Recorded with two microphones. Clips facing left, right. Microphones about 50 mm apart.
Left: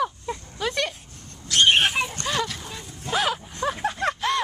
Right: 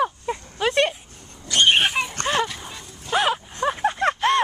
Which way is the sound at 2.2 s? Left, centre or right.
Right.